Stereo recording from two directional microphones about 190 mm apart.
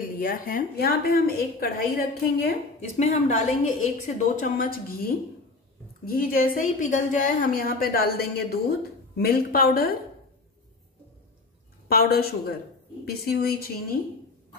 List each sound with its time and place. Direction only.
0.0 s a woman's voice: 50° left (ahead or behind)
3.0 s a woman's voice: 35° left (ahead or behind)
11.9 s speech: 55° left (ahead or behind)